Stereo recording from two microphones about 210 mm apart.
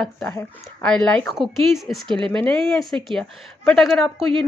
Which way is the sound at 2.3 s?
5° left (ahead or behind).